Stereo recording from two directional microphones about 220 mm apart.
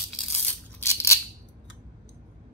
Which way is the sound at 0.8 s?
10° left (ahead or behind).